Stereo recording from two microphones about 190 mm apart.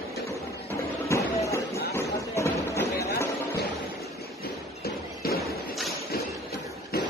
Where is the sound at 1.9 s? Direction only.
15° left (ahead or behind).